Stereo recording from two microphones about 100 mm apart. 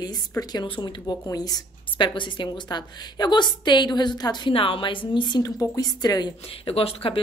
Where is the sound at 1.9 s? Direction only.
55° left (ahead or behind).